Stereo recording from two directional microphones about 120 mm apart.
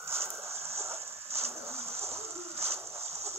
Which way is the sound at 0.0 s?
20° right (ahead or behind).